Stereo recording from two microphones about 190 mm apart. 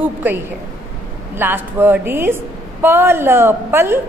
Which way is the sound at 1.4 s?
10° right (ahead or behind).